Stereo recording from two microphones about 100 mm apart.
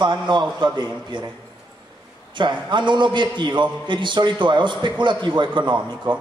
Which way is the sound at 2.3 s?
50° right (ahead or behind).